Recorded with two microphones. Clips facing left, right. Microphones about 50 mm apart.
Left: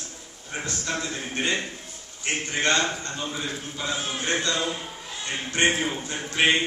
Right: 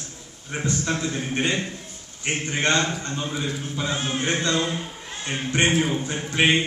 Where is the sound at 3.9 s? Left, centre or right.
Right.